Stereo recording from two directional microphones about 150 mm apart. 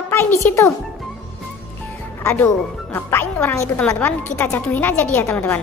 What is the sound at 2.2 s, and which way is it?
Speech, 15° left (ahead or behind).